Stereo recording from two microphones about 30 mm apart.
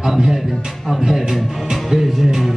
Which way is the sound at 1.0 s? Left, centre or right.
Centre.